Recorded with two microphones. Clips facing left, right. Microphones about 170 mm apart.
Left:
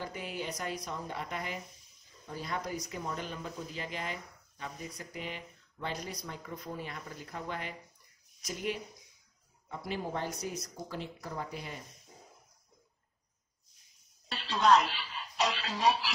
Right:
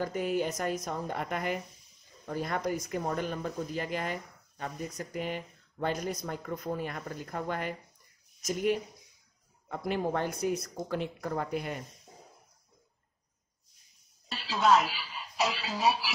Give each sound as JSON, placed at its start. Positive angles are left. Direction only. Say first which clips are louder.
{"t": 0.0, "sound": "speech", "louder": "right 9 dB", "side_deg": -45}
{"t": 9.7, "sound": "speech", "louder": "right 6 dB", "side_deg": -55}
{"t": 14.3, "sound": "speech", "louder": "right 1 dB", "side_deg": -5}